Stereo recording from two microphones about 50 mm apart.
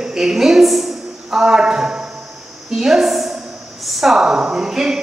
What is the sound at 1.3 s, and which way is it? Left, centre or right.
A woman's voice, centre.